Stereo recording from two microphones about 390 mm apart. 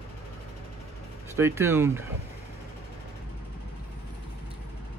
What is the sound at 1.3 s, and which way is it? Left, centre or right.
Speech, centre.